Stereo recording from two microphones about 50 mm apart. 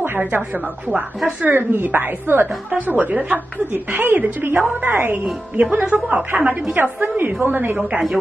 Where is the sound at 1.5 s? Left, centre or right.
Right.